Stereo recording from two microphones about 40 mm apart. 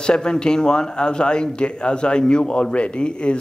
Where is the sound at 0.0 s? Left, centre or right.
Left.